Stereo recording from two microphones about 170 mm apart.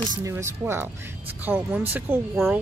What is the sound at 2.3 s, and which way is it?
Speech, centre (ahead or behind).